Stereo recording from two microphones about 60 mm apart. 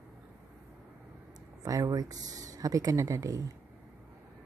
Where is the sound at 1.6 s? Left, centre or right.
Right.